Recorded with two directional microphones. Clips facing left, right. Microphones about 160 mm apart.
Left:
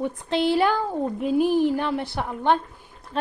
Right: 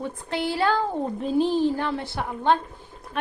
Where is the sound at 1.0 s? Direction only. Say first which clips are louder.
Left 1 dB; 5° left (ahead or behind).